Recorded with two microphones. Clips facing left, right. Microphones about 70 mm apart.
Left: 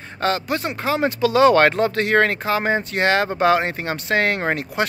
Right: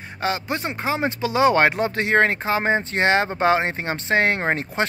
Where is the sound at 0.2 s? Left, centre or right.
Centre.